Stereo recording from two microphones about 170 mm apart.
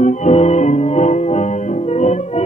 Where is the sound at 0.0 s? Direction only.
45° left (ahead or behind).